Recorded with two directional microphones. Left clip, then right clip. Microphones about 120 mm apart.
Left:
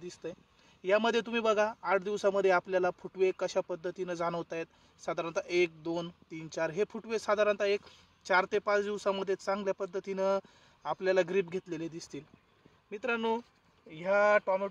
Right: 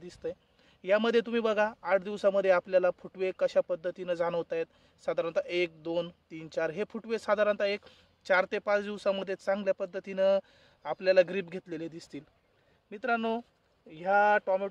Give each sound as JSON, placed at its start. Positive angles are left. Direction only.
{"t": 0.0, "sound": "speech", "side_deg": -50}